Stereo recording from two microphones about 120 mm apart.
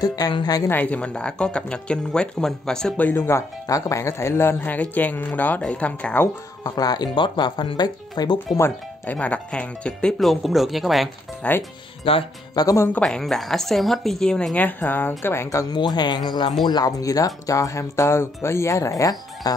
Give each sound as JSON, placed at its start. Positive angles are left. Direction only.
{"t": 0.0, "sound": "speech", "side_deg": 35}
{"t": 0.7, "sound": "speech", "side_deg": 15}
{"t": 6.6, "sound": "speech", "side_deg": 35}
{"t": 8.5, "sound": "speech", "side_deg": 20}
{"t": 11.4, "sound": "speech", "side_deg": 10}
{"t": 12.0, "sound": "speech", "side_deg": 50}
{"t": 12.5, "sound": "speech", "side_deg": 25}
{"t": 12.9, "sound": "speech", "side_deg": 5}